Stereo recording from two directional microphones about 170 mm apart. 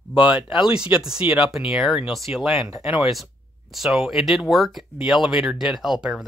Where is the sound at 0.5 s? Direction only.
30° left (ahead or behind).